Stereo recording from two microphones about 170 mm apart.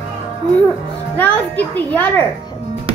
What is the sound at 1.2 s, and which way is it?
A child's voice, 10° left (ahead or behind).